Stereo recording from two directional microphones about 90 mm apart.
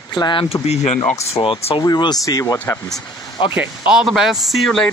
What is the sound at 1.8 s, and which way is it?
Speech, 55° left (ahead or behind).